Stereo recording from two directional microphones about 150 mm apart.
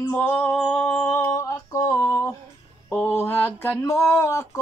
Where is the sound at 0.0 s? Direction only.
15° left (ahead or behind).